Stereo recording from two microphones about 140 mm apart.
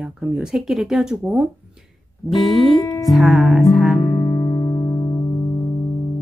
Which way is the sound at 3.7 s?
Centre (ahead or behind).